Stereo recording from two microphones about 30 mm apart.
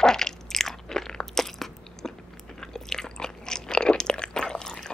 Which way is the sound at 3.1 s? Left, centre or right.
Left.